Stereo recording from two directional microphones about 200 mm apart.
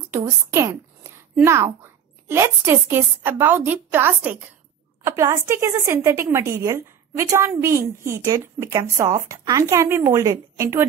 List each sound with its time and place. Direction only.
0.2 s a woman's voice: 15° right (ahead or behind)